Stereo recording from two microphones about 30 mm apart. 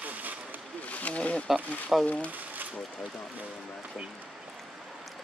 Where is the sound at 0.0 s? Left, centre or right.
Right.